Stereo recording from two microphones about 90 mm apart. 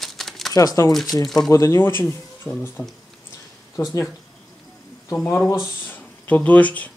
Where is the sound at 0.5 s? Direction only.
40° left (ahead or behind).